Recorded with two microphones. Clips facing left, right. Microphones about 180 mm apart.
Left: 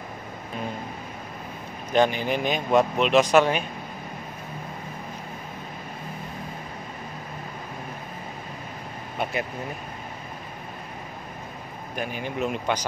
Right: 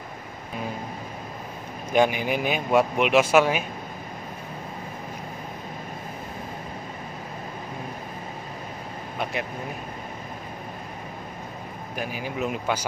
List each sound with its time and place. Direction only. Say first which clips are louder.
1.9 s speech: even; 10° right (ahead or behind)
9.2 s speech: left 2 dB; centre (ahead or behind)
11.9 s speech: left 1 dB; 5° right (ahead or behind)